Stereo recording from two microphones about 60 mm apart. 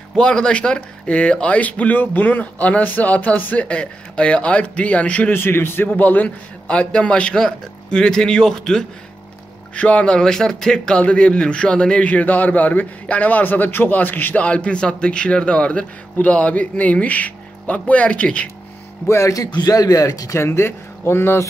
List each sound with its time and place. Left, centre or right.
0.1 s speech: centre
5.3 s speech: left
5.9 s a man's voice: left; by 8.8 s centre
9.8 s speech: left
14.4 s speech: left
19.0 s speech: left
19.3 s speech: left
20.4 s speech: left